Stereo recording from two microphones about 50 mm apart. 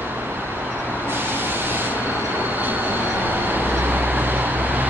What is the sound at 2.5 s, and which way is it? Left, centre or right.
Vehicle, right.